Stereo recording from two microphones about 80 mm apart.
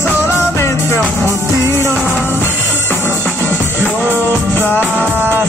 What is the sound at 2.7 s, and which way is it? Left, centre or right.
Music, left.